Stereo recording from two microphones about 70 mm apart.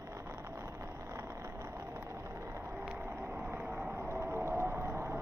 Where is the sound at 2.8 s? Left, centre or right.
Centre.